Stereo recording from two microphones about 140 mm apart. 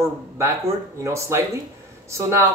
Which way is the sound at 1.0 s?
20° right (ahead or behind).